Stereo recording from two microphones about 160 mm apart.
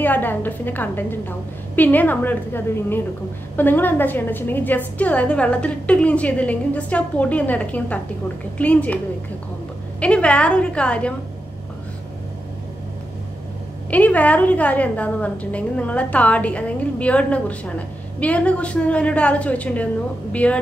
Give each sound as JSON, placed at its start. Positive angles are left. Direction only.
{"t": 0.0, "sound": "a woman's voice", "side_deg": 10}
{"t": 13.8, "sound": "a woman's voice", "side_deg": 10}